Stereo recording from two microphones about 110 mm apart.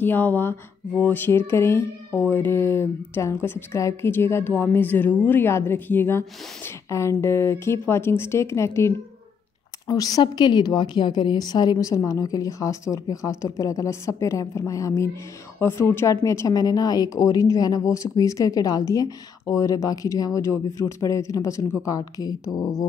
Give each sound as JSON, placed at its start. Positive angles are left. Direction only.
{"t": 0.0, "sound": "a woman's voice", "side_deg": 15}